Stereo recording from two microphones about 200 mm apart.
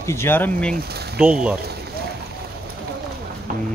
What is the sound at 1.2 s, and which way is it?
Speech, 5° right (ahead or behind).